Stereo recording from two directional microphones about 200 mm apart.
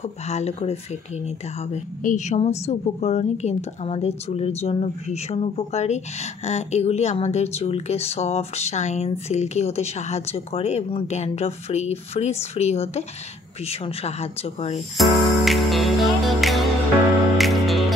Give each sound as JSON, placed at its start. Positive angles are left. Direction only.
{"t": 0.0, "sound": "a woman's voice", "side_deg": 35}
{"t": 15.0, "sound": "music", "side_deg": 0}